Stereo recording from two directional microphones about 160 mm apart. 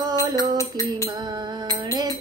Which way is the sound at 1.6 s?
25° right (ahead or behind).